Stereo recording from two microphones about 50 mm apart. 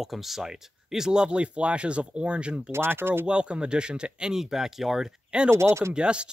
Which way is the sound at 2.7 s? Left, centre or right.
Right.